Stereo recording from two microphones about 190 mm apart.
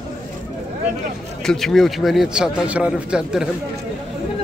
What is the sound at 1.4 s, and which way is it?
A man's voice, centre (ahead or behind).